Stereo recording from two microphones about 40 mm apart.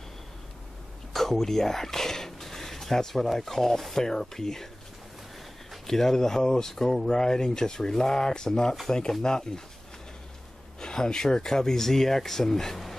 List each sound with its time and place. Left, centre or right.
1.1 s speech: centre
5.9 s speech: centre
10.8 s speech: centre